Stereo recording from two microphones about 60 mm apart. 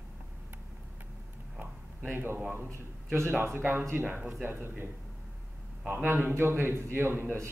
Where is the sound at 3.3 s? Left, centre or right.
Right.